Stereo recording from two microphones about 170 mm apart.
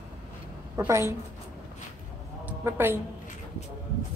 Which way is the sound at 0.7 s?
15° right (ahead or behind).